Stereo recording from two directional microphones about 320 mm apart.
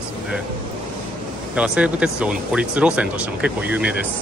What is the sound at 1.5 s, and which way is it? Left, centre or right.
Speech, centre.